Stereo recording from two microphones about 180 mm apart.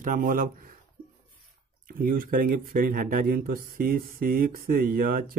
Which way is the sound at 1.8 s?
50° right (ahead or behind).